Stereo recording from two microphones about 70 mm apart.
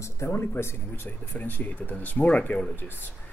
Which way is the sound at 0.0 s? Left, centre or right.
Left.